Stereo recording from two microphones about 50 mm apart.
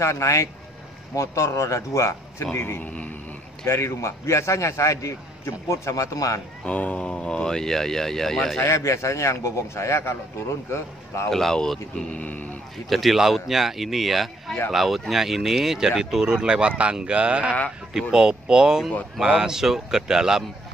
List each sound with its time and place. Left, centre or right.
0.0 s a man's voice: left
2.5 s a man's voice: left
2.8 s a sound: left
3.6 s a man's voice: left
6.6 s speech: left; by 8.5 s centre
8.5 s a man's voice: left
11.2 s speech: centre
12.1 s speech: left
12.9 s a man's voice: centre